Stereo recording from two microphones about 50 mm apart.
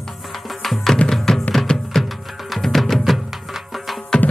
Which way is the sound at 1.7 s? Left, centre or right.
Centre.